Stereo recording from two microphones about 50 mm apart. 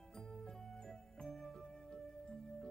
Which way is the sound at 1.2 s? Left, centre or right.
Centre.